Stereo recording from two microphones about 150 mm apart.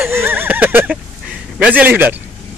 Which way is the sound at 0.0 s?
15° right (ahead or behind).